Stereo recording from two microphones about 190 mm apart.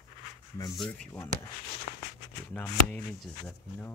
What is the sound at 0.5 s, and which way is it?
Speech, 25° left (ahead or behind).